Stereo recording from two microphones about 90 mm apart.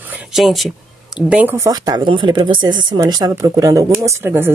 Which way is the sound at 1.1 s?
10° right (ahead or behind).